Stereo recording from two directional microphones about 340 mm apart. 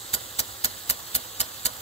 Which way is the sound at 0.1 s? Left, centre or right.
Centre.